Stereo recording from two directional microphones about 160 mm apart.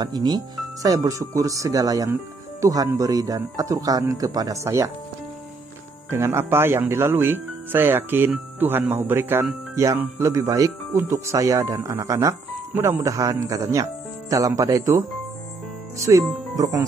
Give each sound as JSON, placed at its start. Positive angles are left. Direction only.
{"t": 0.0, "sound": "speech", "side_deg": -25}
{"t": 6.0, "sound": "speech", "side_deg": -15}